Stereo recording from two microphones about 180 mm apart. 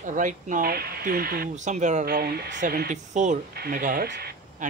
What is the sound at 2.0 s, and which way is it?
Speech, 60° right (ahead or behind).